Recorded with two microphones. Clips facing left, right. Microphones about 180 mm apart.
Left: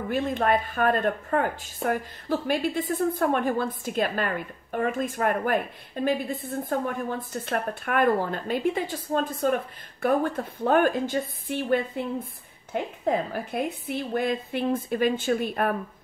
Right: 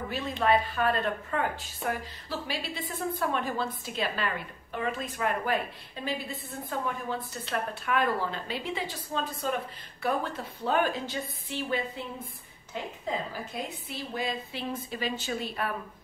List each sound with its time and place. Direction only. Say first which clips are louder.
0.1 s speech: left 3 dB; 50° left (ahead or behind)